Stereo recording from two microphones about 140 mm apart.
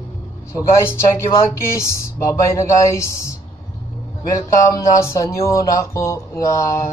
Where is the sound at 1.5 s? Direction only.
20° left (ahead or behind).